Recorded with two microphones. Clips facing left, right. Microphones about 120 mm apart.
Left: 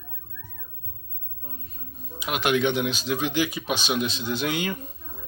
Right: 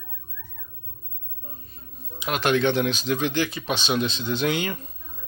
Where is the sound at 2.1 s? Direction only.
10° left (ahead or behind).